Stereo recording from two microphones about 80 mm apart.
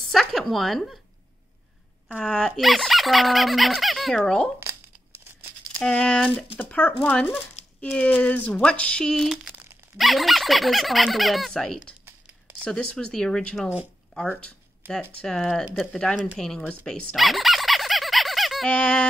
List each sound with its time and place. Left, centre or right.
0.1 s a sound: centre
2.0 s speech: centre
5.8 s speech: centre
15.7 s speech: centre
17.1 s squeak: centre
18.7 s speech: centre